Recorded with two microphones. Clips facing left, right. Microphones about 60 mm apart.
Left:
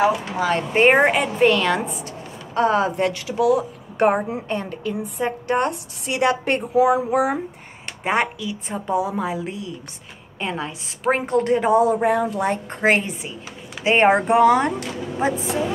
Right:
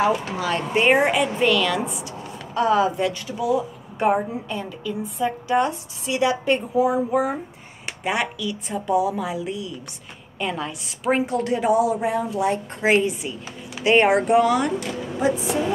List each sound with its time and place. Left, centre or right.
0.4 s speech: left
3.1 s speech: left
6.7 s speech: left
8.0 s a woman's voice: left
11.9 s a woman's voice: left
13.8 s speech: left